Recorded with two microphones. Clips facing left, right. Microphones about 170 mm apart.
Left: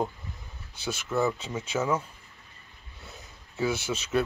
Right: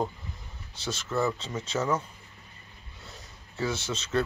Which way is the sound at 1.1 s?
Centre (ahead or behind).